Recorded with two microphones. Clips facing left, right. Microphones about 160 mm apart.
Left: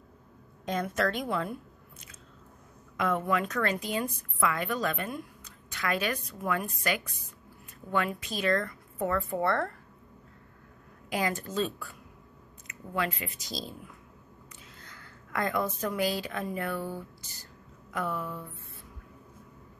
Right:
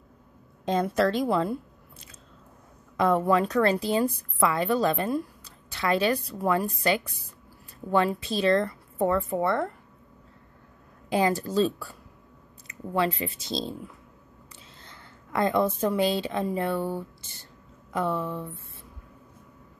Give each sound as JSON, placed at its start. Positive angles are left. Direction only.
{"t": 0.7, "sound": "a woman's voice", "side_deg": -30}
{"t": 11.1, "sound": "a woman's voice", "side_deg": -30}
{"t": 14.8, "sound": "a woman's voice", "side_deg": -25}